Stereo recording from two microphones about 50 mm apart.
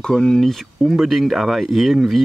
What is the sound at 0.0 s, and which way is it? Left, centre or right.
Speech, centre.